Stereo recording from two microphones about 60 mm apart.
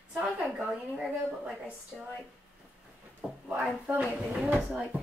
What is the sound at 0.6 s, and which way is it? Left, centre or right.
Speech, centre.